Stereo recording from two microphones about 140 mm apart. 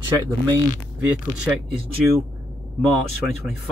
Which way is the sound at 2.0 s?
10° right (ahead or behind).